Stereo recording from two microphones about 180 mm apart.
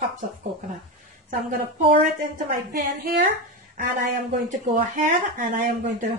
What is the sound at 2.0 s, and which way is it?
A woman's voice, 50° right (ahead or behind).